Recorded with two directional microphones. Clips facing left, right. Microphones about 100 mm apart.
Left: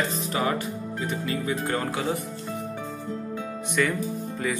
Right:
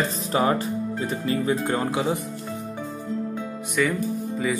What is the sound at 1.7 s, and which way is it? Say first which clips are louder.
Speech: right 3 dB; 20° right (ahead or behind).